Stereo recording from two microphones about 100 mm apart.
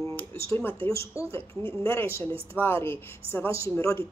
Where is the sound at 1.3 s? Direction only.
65° right (ahead or behind).